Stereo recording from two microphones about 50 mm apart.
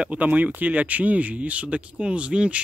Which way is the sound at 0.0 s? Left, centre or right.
Right.